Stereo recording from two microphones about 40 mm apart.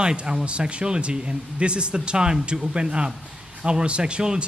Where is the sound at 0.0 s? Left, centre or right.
Right.